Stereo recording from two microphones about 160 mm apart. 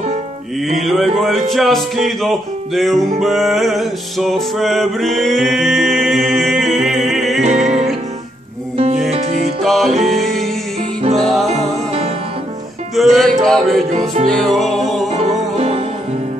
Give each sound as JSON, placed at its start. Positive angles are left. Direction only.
{"t": 0.6, "sound": "music", "side_deg": 0}
{"t": 7.4, "sound": "music", "side_deg": -45}
{"t": 9.6, "sound": "music", "side_deg": 0}
{"t": 11.1, "sound": "music", "side_deg": 0}
{"t": 11.4, "sound": "music", "side_deg": -40}
{"t": 12.9, "sound": "music", "side_deg": 0}
{"t": 13.8, "sound": "music", "side_deg": -45}
{"t": 14.4, "sound": "music", "side_deg": 0}
{"t": 15.0, "sound": "music", "side_deg": -40}